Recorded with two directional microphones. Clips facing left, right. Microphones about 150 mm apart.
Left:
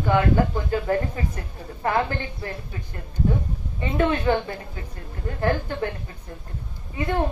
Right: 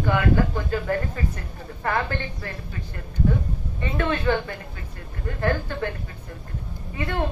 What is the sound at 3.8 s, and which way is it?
A woman's voice, 20° left (ahead or behind).